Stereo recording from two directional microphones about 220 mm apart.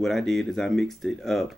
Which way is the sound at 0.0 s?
Centre (ahead or behind).